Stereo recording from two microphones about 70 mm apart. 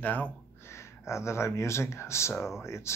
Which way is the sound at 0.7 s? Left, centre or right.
Left.